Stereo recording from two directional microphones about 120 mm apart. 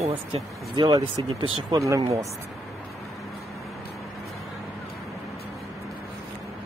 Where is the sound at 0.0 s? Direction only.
45° right (ahead or behind).